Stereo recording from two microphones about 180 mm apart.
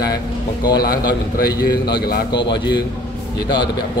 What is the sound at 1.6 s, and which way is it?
Speech, 60° left (ahead or behind).